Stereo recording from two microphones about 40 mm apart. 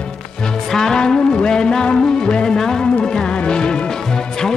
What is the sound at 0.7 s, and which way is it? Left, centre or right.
Music, centre.